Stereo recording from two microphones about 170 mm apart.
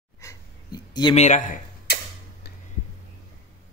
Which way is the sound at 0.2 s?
20° left (ahead or behind).